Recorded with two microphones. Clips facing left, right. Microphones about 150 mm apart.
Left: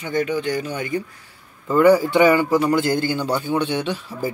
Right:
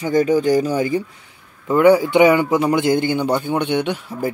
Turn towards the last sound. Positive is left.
turn(degrees=-15)  # may be behind; listen again after turning